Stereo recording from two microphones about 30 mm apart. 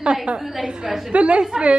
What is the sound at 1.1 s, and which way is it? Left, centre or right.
Speech, right.